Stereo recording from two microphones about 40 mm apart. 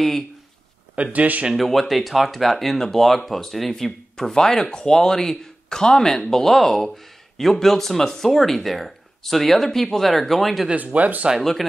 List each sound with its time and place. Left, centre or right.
0.9 s a man's voice: right
1.5 s speech: centre
10.8 s a man's voice: right